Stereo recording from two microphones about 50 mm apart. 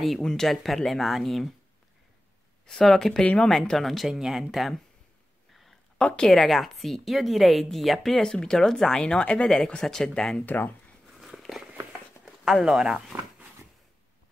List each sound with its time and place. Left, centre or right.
0.2 s a woman's voice: centre
2.6 s speech: centre
3.1 s speech: centre
3.4 s a woman's voice: centre
5.5 s a sound: centre
5.9 s speech: centre
6.4 s a woman's voice: centre
9.0 s speech: left
10.4 s speech: left
11.1 s walk: centre
12.6 s speech: centre